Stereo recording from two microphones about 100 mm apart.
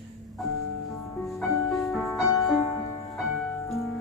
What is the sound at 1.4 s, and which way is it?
Music, centre (ahead or behind).